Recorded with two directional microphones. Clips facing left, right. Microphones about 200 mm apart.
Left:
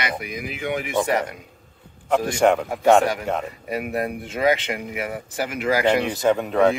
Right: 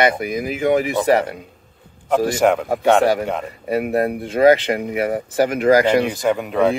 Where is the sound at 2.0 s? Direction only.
5° right (ahead or behind).